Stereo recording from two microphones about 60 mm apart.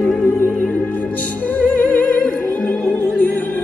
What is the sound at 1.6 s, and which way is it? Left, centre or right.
Music, left.